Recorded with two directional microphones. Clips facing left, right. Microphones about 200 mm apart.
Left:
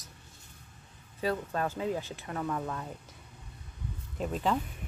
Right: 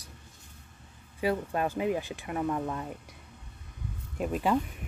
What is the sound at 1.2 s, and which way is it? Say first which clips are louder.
Speech: right 3 dB; 15° right (ahead or behind).